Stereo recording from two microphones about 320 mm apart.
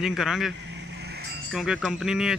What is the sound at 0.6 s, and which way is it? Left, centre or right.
Vehicle, right.